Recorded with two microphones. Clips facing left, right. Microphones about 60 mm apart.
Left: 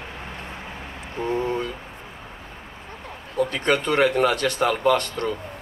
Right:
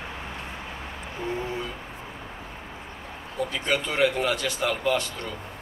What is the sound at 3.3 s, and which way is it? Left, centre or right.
A man's voice, left.